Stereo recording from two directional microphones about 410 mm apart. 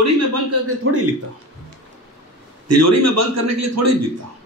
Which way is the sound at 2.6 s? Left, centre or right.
Right.